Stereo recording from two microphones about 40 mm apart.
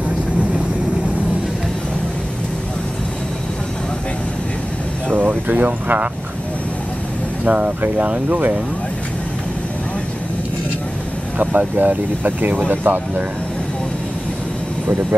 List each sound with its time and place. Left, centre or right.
5.1 s a sound: right
7.4 s speech: right
11.3 s speech: right